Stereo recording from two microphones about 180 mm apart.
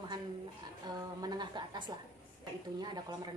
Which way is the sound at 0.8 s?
20° right (ahead or behind).